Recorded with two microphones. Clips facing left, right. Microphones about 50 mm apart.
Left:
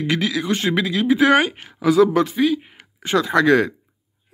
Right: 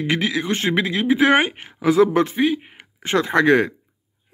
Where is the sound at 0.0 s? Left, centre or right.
Right.